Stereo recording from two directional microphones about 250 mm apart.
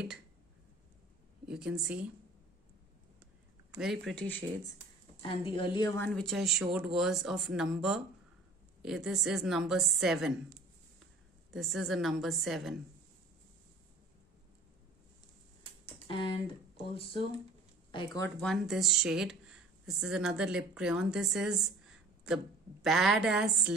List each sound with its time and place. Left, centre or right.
1.5 s a woman's voice: centre
3.8 s a woman's voice: centre
5.2 s a woman's voice: left; by 10.4 s centre
11.5 s a woman's voice: centre
16.1 s speech: left
18.4 s speech: centre